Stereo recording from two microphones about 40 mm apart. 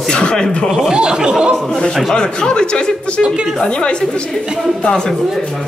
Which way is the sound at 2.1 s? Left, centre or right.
Left.